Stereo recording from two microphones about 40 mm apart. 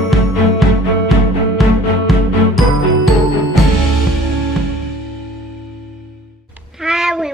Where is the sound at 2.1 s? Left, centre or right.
Centre.